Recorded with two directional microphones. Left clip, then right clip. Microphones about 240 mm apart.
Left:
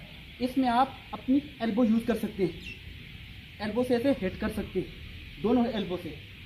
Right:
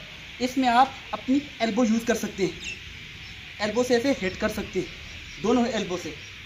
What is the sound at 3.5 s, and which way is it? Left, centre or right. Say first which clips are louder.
Speech: right 5 dB; centre.